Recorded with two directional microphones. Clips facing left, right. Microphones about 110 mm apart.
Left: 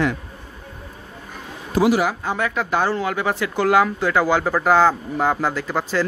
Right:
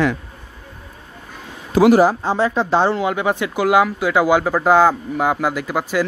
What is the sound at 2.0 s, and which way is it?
Speech, 30° right (ahead or behind).